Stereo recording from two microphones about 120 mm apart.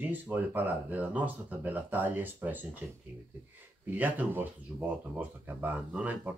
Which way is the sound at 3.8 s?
15° right (ahead or behind).